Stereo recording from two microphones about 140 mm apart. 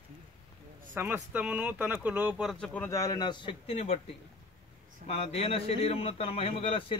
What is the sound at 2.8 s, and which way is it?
A man's voice, 25° left (ahead or behind).